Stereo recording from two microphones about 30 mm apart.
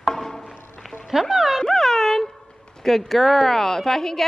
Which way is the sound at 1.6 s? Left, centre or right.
Centre.